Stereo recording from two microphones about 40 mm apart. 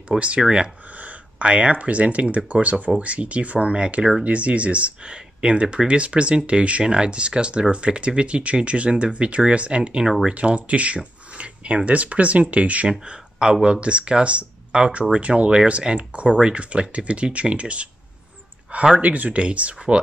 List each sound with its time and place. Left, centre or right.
0.4 s speech: right
0.9 s speech: right
13.0 s speech: right
18.9 s speech: right